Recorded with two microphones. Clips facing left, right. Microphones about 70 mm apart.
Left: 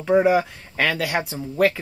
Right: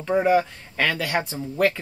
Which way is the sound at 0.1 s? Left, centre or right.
Centre.